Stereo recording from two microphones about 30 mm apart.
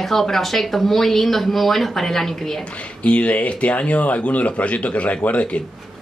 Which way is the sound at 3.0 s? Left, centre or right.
Left.